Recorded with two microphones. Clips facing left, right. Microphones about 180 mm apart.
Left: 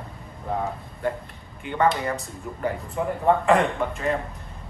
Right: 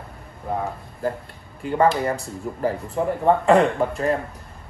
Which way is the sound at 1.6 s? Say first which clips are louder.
Right 3 dB; 35° right (ahead or behind).